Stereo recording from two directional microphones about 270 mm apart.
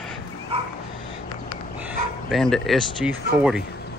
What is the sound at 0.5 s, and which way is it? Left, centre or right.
Dog, right.